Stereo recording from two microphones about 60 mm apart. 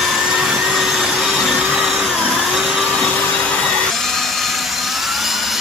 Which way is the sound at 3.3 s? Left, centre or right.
Centre.